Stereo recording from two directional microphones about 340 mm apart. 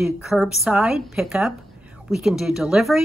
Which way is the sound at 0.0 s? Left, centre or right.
Centre.